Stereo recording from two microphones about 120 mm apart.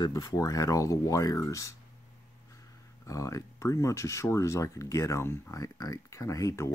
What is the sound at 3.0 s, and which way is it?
Speech, 25° left (ahead or behind).